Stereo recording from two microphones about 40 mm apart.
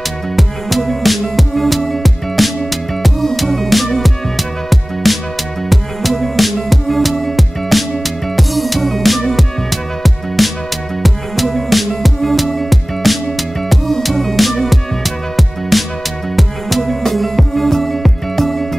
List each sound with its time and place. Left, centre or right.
0.4 s music: centre